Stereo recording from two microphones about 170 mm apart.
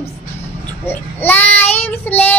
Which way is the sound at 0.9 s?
10° left (ahead or behind).